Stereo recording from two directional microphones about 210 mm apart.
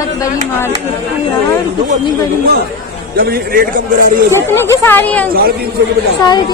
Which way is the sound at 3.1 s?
45° right (ahead or behind).